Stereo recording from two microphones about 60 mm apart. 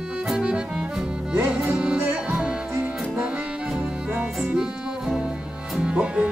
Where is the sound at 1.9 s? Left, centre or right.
Right.